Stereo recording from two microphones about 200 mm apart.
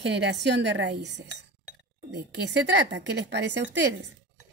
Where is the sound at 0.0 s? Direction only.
60° right (ahead or behind).